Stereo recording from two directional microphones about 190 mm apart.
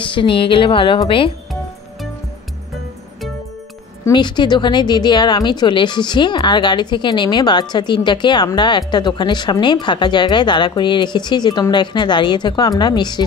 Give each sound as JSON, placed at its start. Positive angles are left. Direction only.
{"t": 0.0, "sound": "a woman's voice", "side_deg": 25}
{"t": 4.0, "sound": "a woman's voice", "side_deg": 25}